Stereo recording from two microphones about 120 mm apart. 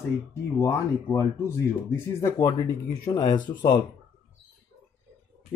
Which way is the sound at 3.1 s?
40° left (ahead or behind).